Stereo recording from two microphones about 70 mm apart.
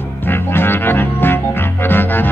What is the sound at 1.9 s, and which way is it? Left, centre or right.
Music, left.